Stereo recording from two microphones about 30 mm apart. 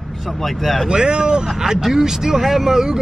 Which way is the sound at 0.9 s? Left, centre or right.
Right.